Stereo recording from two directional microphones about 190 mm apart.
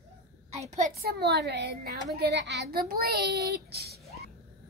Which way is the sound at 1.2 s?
60° right (ahead or behind).